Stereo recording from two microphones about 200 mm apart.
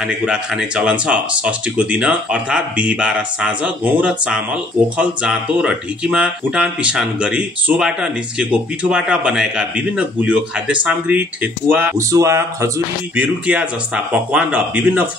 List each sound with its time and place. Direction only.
0.0 s speech: 5° right (ahead or behind)